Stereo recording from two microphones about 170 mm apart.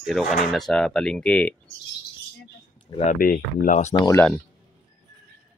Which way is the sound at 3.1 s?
55° left (ahead or behind).